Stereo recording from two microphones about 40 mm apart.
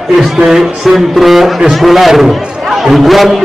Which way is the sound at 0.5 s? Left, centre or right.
Centre.